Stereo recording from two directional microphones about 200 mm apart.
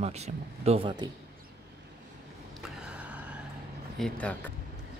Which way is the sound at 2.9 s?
5° right (ahead or behind).